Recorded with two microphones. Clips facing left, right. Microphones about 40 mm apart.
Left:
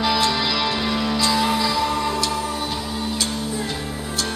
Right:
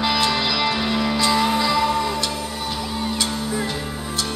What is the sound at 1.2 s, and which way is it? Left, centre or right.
Music, right.